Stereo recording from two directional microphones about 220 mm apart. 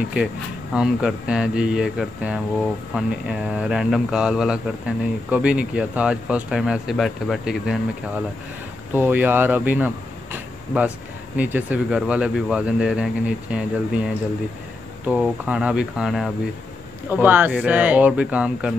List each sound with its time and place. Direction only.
0.7 s speech: 5° right (ahead or behind)
8.9 s speech: 10° right (ahead or behind)